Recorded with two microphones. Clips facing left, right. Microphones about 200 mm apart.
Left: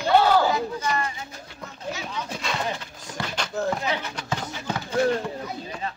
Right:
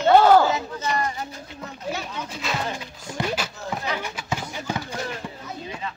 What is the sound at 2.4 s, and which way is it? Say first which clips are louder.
Speech: right 3 dB; 5° right (ahead or behind).